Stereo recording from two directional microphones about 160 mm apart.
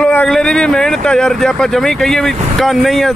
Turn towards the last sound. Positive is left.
turn(degrees=0)  # may be behind; listen again after turning